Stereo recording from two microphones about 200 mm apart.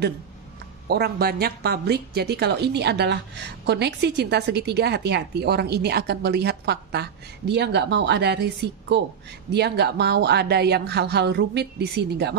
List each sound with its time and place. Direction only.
0.8 s a woman's voice: 50° right (ahead or behind)